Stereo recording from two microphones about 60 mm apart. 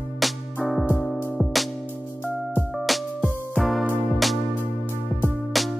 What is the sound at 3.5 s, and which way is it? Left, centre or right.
Music, centre.